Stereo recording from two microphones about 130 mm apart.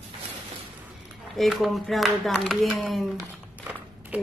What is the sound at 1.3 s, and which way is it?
Speech, centre (ahead or behind).